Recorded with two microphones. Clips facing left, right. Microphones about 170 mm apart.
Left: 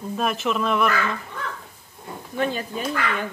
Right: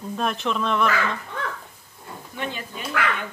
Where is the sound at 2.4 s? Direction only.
40° left (ahead or behind).